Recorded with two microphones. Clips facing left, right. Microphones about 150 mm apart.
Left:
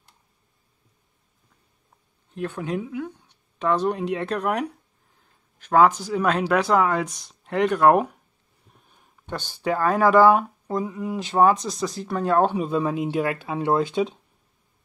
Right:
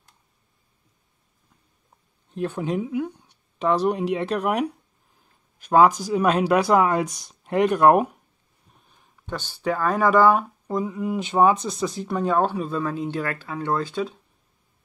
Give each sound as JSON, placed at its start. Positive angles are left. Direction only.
{"t": 2.3, "sound": "speech", "side_deg": -15}
{"t": 8.9, "sound": "speech", "side_deg": 10}
{"t": 13.1, "sound": "speech", "side_deg": 20}